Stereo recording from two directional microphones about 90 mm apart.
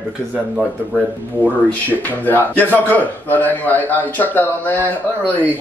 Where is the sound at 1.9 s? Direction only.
20° left (ahead or behind).